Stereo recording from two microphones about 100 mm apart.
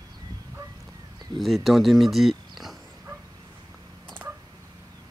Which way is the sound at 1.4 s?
Centre (ahead or behind).